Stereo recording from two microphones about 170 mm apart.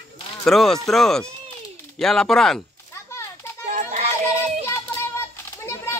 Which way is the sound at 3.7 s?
45° right (ahead or behind).